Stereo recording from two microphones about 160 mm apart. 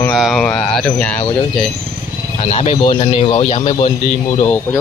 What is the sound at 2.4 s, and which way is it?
A man's voice, 40° left (ahead or behind).